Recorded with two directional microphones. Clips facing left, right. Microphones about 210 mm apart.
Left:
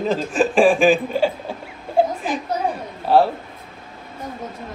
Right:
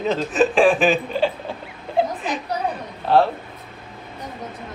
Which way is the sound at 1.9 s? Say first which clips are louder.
Left 3 dB; 50° left (ahead or behind).